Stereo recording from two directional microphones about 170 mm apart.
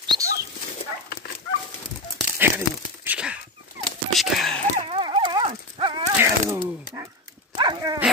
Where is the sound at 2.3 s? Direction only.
10° right (ahead or behind).